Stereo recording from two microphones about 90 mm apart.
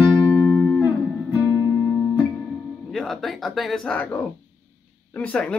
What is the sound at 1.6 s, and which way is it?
Music, 35° left (ahead or behind).